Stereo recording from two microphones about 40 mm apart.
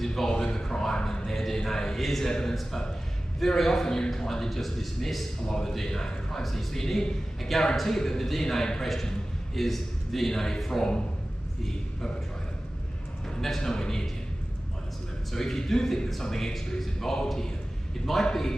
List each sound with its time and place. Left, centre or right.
0.0 s a man's voice: centre
0.3 s a sound: centre
2.0 s a man's voice: centre
2.2 s a man's voice: centre
13.6 s a man's voice: centre
15.3 s a man's voice: centre